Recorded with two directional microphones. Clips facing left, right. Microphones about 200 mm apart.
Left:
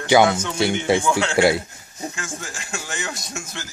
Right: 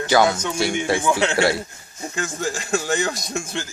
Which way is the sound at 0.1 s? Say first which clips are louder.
Left 2 dB; 25° left (ahead or behind).